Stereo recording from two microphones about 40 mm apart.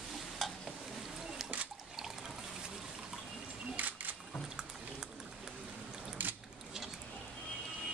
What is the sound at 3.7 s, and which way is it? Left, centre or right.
Camera, right.